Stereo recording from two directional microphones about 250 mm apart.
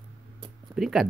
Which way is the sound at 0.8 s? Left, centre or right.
Centre.